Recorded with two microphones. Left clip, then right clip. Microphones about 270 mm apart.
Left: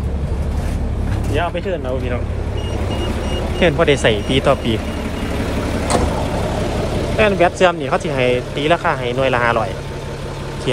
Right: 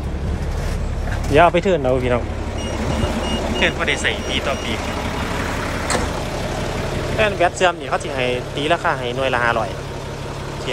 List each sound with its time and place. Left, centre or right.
1.3 s speech: centre
3.5 s speech: centre
7.2 s speech: centre